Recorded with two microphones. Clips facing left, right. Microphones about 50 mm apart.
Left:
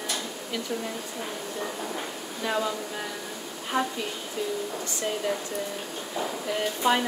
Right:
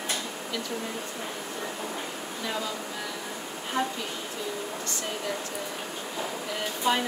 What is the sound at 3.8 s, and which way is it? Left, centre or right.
Speech, left.